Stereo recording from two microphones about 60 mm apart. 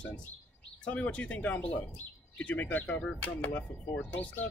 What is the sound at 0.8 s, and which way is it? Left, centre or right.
Speech, centre.